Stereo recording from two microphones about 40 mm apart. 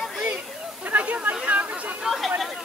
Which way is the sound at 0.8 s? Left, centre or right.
Right.